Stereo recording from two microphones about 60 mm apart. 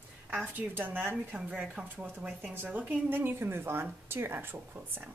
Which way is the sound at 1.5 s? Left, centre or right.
Right.